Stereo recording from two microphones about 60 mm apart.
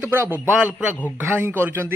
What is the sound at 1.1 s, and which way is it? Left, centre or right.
Speech, right.